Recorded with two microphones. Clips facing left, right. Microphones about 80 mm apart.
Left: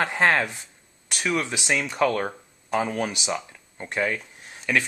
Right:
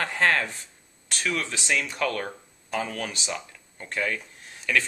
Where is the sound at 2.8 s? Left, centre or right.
Centre.